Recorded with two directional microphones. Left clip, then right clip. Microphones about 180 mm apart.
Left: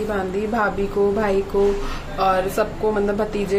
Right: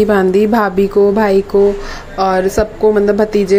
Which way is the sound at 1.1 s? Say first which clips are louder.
Right 8 dB; 40° right (ahead or behind).